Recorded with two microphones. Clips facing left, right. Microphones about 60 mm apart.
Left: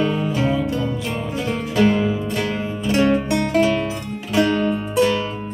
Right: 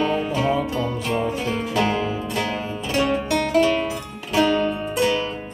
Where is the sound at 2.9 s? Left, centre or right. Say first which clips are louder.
Left 3 dB; centre.